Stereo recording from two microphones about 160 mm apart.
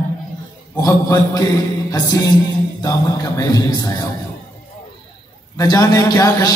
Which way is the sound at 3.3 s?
25° left (ahead or behind).